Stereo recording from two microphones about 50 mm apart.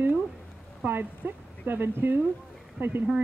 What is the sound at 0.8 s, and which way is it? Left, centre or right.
Speech, right.